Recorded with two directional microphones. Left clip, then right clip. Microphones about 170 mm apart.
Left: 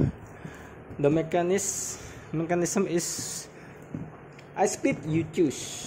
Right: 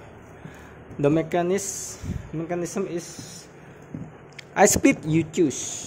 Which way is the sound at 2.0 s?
15° left (ahead or behind).